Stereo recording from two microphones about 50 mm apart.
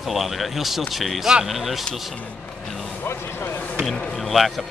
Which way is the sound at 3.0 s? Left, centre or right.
Left.